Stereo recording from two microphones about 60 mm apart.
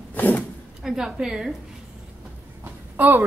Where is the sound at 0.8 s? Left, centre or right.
Centre.